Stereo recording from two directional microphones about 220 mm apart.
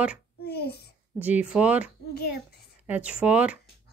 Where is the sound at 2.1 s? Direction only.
45° left (ahead or behind).